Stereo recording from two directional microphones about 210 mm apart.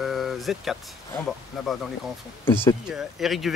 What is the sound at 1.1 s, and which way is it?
Speech, centre (ahead or behind).